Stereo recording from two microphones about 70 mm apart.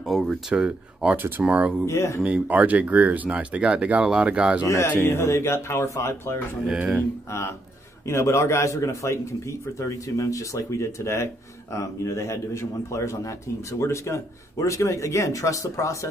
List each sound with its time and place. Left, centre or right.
0.0 s speech: centre
0.5 s speech: centre
1.1 s speech: right
1.9 s a man's voice: left
2.2 s speech: centre
5.0 s a man's voice: left